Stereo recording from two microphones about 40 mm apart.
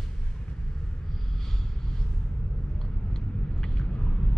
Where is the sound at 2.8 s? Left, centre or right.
Centre.